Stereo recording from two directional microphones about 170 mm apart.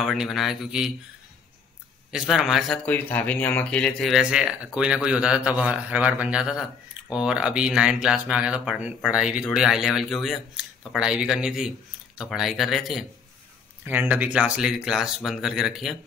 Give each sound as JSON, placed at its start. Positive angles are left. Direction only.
{"t": 0.0, "sound": "speech", "side_deg": 0}
{"t": 2.1, "sound": "speech", "side_deg": 0}